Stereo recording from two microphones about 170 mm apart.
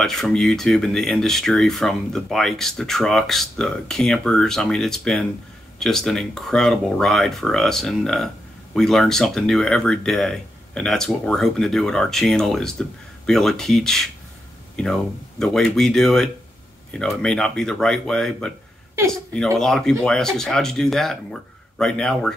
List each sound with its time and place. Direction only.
0.0 s speech: centre (ahead or behind)
19.6 s speech: 5° left (ahead or behind)